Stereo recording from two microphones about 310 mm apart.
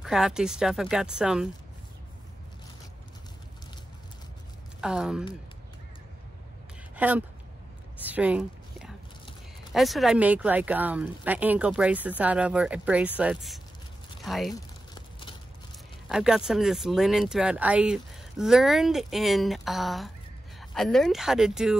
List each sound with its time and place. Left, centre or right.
0.0 s speech: centre
4.8 s speech: centre
7.0 s speech: centre
8.0 s a sound: centre
9.7 s speech: centre
15.0 s a sound: centre
16.1 s speech: centre